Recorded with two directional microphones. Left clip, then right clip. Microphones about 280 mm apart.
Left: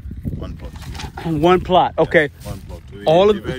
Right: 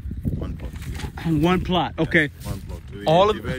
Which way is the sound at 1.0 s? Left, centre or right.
Centre.